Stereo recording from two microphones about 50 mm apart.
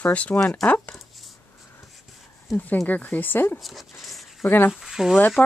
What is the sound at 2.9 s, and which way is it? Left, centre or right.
Speech, left.